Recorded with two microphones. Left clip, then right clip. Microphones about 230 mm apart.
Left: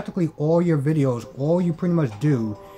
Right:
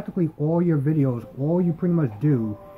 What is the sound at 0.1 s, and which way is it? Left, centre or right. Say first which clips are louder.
Speech: left 3 dB; centre.